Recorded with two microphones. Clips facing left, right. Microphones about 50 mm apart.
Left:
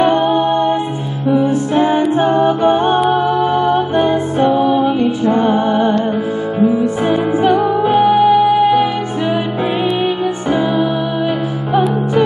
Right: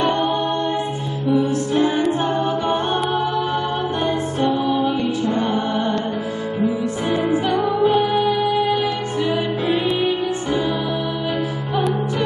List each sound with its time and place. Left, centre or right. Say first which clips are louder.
0.0 s music: left 7 dB; left
2.4 s a capella: left 8 dB; left
3.1 s music: left 7 dB; centre
7.4 s music: left 8 dB; centre
7.9 s music: left 8 dB; centre